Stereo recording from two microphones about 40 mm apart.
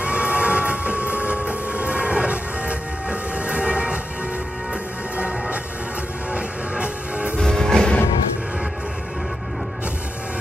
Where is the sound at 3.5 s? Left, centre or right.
Right.